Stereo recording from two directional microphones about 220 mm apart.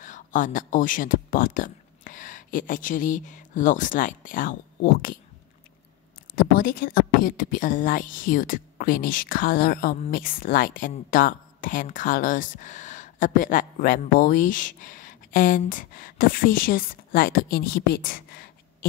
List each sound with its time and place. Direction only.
0.0 s speech: 35° left (ahead or behind)
6.3 s speech: 40° left (ahead or behind)